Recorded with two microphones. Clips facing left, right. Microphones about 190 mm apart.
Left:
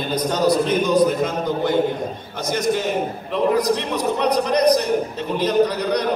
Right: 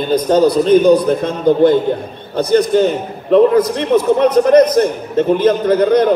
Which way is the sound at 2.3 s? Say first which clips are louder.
Right 10 dB; 60° right (ahead or behind).